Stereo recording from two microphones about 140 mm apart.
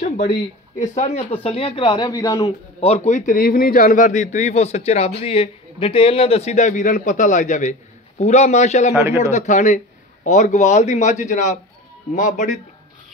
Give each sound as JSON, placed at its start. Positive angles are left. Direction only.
{"t": 0.0, "sound": "speech", "side_deg": 75}
{"t": 2.0, "sound": "a man's voice", "side_deg": 30}
{"t": 2.8, "sound": "a man's voice", "side_deg": 50}